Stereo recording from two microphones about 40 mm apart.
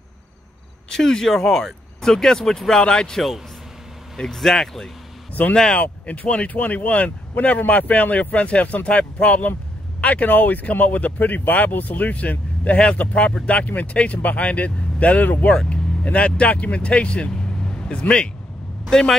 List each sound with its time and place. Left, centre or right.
0.8 s speech: centre
4.2 s speech: centre
5.5 s speech: left
5.8 s speech: left
17.3 s vehicle: centre
18.9 s speech: centre